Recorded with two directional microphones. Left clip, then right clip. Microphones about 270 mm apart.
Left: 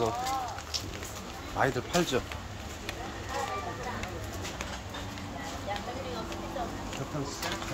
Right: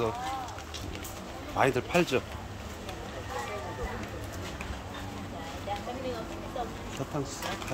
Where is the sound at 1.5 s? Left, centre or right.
Centre.